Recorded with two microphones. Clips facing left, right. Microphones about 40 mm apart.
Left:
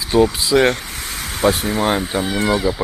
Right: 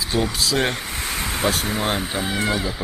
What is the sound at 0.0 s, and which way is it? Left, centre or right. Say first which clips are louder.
Speech: left 7 dB; centre.